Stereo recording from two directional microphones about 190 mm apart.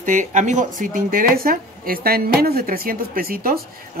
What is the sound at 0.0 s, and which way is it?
Speech, 40° right (ahead or behind).